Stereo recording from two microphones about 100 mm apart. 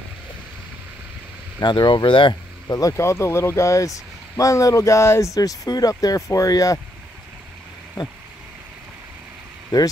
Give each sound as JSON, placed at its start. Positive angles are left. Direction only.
{"t": 1.6, "sound": "speech", "side_deg": 50}
{"t": 2.7, "sound": "speech", "side_deg": 30}
{"t": 9.7, "sound": "speech", "side_deg": 40}